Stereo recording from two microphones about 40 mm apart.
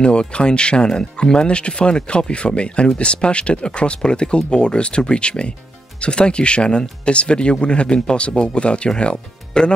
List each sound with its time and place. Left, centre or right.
0.0 s speech: left